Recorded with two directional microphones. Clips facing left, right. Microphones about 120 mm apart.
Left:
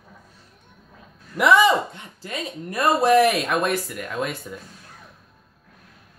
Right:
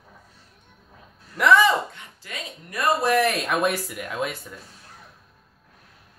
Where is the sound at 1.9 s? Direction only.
30° left (ahead or behind).